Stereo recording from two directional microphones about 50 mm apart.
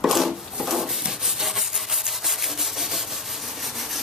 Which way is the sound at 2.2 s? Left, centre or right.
Centre.